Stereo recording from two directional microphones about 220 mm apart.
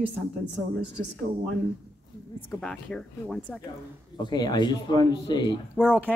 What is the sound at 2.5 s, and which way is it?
Speech, centre (ahead or behind).